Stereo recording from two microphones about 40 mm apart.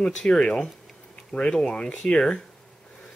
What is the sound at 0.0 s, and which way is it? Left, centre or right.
Speech, centre.